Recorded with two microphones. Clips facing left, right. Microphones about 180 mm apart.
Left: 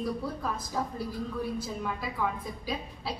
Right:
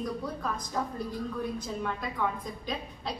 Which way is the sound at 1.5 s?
5° left (ahead or behind).